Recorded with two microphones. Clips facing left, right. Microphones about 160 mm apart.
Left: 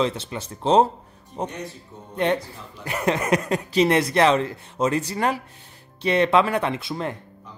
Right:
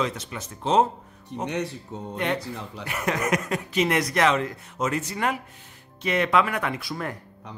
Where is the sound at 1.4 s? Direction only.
70° right (ahead or behind).